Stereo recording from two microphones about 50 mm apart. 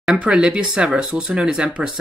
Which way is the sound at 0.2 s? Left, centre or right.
Centre.